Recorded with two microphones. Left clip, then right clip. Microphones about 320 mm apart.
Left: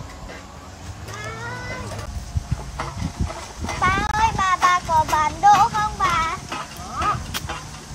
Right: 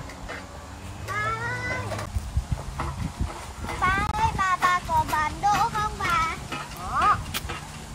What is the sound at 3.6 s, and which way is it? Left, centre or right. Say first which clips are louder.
Child singing: left 4 dB; left.